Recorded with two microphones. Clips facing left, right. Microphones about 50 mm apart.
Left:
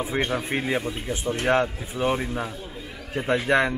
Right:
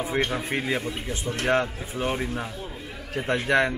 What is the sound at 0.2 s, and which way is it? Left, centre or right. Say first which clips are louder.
A man's voice: left 1 dB; centre.